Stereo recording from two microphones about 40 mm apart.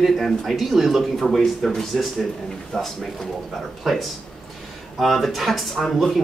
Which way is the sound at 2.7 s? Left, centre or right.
Centre.